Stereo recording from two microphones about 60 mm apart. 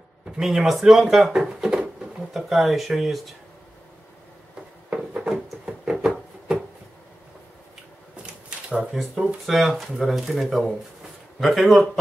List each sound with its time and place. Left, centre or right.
0.4 s speech: centre
1.3 s a sound: centre
2.1 s speech: centre
4.8 s a sound: centre
8.2 s typewriter: centre
8.9 s speech: centre